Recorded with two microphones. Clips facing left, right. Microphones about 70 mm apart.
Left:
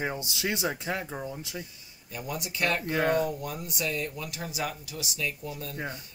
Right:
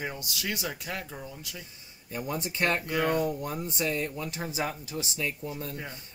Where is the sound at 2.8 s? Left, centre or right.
Left.